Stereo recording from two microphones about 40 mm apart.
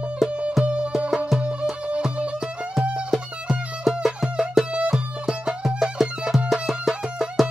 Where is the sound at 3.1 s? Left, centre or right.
Centre.